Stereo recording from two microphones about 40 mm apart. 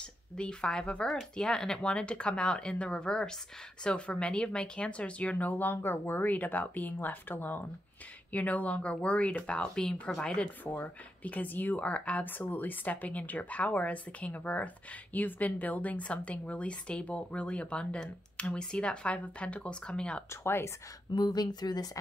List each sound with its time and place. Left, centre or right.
0.4 s speech: left
8.3 s speech: left
10.8 s speech: left